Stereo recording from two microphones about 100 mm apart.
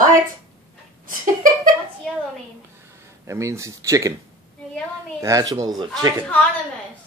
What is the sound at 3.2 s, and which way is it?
Speech, 30° right (ahead or behind).